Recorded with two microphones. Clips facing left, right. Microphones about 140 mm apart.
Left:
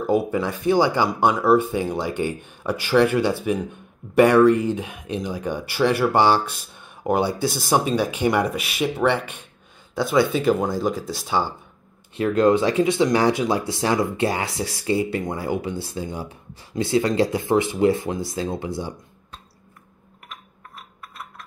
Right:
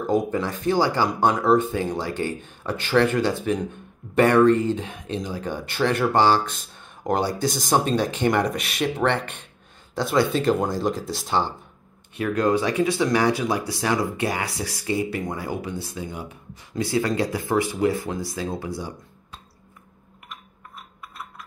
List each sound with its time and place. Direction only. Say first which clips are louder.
0.0 s speech: left 2 dB; 10° left (ahead or behind)
12.2 s speech: left 4 dB; 25° left (ahead or behind)